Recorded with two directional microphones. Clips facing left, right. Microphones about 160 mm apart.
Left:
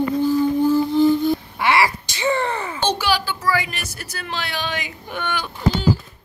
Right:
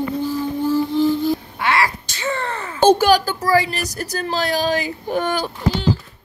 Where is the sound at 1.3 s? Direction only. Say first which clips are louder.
Left 1 dB; 5° left (ahead or behind).